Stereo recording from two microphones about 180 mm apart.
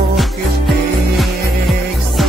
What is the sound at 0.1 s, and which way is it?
Music, centre (ahead or behind).